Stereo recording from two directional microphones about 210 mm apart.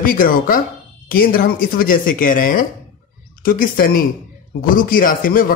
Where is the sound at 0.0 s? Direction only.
40° left (ahead or behind).